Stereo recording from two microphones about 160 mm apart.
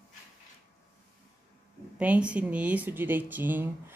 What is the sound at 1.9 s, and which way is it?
Speech, 10° right (ahead or behind).